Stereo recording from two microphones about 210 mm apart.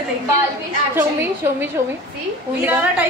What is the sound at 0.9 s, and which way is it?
A woman's voice, 10° right (ahead or behind).